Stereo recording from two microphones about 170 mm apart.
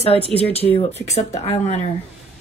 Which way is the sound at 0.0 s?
35° left (ahead or behind).